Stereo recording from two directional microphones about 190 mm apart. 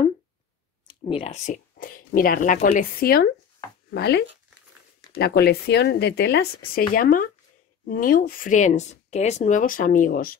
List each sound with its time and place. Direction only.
1.0 s speech: 30° left (ahead or behind); by 6.5 s 60° left (ahead or behind)
6.7 s speech: 45° left (ahead or behind)